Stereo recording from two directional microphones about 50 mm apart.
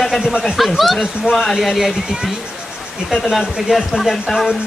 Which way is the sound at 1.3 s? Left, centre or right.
Centre.